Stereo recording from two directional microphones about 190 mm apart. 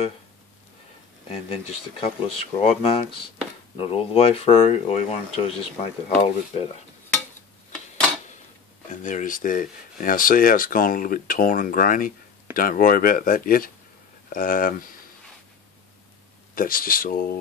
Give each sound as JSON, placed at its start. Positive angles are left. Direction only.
{"t": 1.3, "sound": "speech", "side_deg": 30}
{"t": 9.0, "sound": "speech", "side_deg": 45}
{"t": 16.5, "sound": "speech", "side_deg": 50}